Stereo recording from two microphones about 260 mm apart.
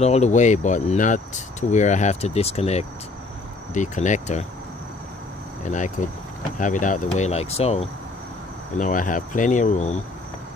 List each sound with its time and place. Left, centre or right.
0.0 s speech: left
5.6 s speech: left